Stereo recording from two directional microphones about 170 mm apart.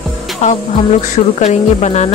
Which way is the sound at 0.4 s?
40° left (ahead or behind).